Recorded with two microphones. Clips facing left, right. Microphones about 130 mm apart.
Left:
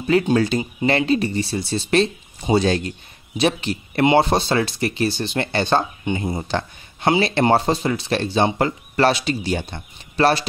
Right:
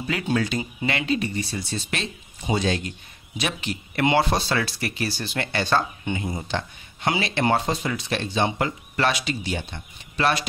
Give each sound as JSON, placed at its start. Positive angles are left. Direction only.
{"t": 0.3, "sound": "speech", "side_deg": 35}
{"t": 6.2, "sound": "speech", "side_deg": 35}